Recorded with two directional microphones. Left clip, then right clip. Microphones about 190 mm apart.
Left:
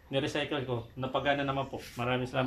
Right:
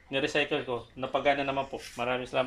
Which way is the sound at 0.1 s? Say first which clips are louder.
Right 4 dB; 15° right (ahead or behind).